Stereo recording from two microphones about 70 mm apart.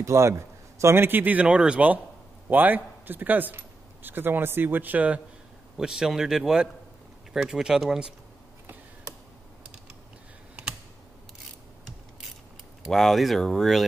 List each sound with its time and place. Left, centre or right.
0.0 s a man's voice: right
5.8 s a man's voice: centre
12.9 s speech: centre